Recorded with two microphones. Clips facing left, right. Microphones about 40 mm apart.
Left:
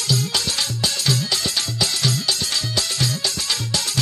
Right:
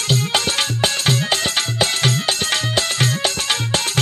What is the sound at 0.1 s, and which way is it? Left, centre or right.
Music, right.